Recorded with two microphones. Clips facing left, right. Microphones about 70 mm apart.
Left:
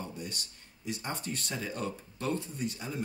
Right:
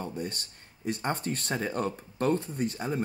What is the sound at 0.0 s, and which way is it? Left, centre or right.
Speech, right.